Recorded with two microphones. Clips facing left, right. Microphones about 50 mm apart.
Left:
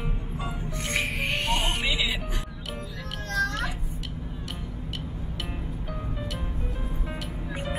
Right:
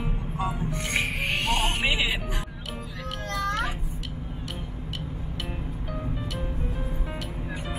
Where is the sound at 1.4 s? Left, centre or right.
Right.